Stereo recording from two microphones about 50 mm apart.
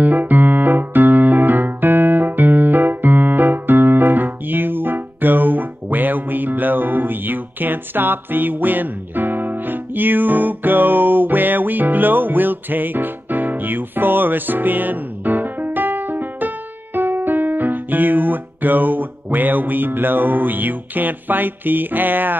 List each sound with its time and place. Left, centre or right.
0.0 s keyboard: right